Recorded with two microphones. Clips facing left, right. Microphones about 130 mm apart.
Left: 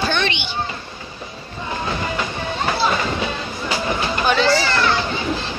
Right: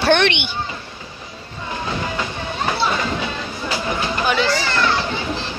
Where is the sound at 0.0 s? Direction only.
70° right (ahead or behind).